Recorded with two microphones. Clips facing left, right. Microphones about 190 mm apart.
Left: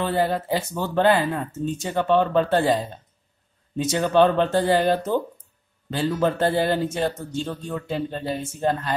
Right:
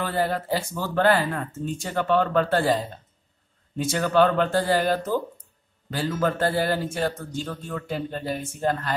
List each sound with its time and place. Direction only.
0.0 s a man's voice: 20° left (ahead or behind)